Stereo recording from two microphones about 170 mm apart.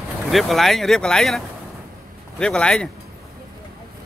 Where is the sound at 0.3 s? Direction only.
Centre (ahead or behind).